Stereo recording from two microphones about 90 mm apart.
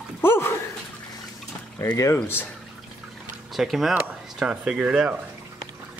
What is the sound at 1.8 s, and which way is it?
Speech, 35° left (ahead or behind).